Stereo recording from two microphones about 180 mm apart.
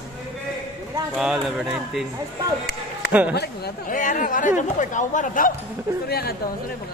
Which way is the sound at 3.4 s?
55° left (ahead or behind).